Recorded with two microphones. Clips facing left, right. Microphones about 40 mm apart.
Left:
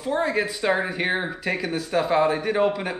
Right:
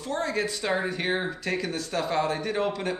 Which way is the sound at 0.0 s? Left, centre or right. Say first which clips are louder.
Left 5 dB; centre.